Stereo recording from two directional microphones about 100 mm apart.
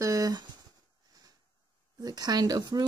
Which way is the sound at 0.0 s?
35° right (ahead or behind).